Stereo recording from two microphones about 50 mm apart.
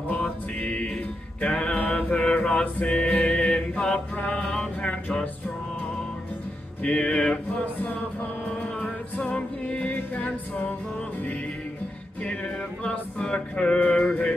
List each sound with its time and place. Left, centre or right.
0.1 s music: left
1.8 s mantra: left
2.3 s music: left
6.8 s music: left
9.8 s music: left
12.8 s music: left
13.8 s mantra: left